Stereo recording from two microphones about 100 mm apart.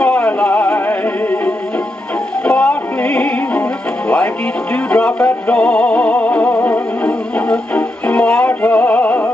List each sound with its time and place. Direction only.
0.0 s music: 15° left (ahead or behind)
4.9 s music: 10° left (ahead or behind)